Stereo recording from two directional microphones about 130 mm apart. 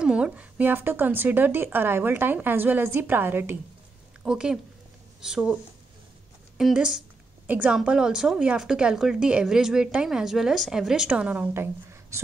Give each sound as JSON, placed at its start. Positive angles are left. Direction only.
{"t": 0.0, "sound": "speech", "side_deg": -10}
{"t": 6.6, "sound": "speech", "side_deg": -5}